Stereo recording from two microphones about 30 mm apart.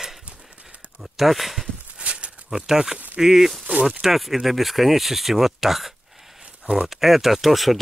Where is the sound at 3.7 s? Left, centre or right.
Right.